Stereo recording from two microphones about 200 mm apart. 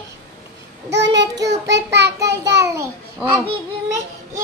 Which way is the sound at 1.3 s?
15° right (ahead or behind).